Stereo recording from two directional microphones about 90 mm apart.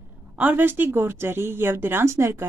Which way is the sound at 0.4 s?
20° right (ahead or behind).